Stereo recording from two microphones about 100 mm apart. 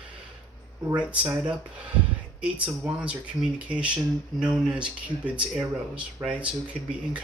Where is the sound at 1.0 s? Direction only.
15° right (ahead or behind).